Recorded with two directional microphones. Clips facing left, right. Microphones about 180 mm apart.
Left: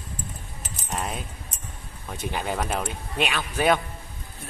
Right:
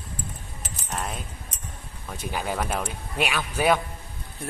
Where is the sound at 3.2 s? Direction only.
10° right (ahead or behind).